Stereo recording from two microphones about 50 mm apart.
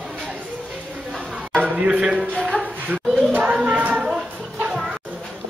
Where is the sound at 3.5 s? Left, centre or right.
Right.